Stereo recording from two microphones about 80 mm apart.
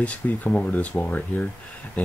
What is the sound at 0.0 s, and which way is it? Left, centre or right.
Speech, centre.